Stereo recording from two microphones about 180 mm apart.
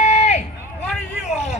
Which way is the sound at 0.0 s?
40° left (ahead or behind).